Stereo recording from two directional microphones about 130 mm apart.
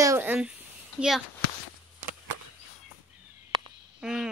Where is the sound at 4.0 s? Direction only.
5° right (ahead or behind).